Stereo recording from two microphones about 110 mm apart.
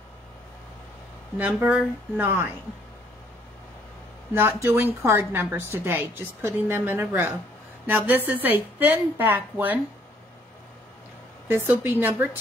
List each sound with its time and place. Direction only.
1.6 s a woman's voice: 15° right (ahead or behind)
4.3 s a woman's voice: 20° right (ahead or behind)
11.4 s a woman's voice: 20° right (ahead or behind)